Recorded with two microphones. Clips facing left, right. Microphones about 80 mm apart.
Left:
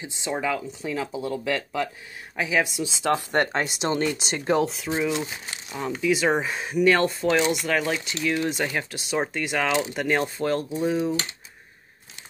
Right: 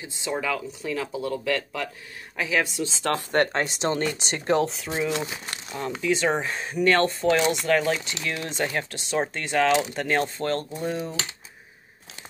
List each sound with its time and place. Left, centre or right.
0.0 s speech: left; by 4.9 s centre
5.1 s speech: right
5.7 s speech: centre